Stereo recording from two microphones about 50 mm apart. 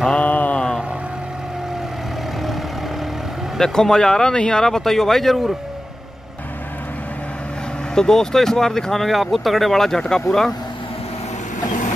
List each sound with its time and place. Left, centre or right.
0.1 s mantra: left
3.5 s speech: centre
7.9 s speech: centre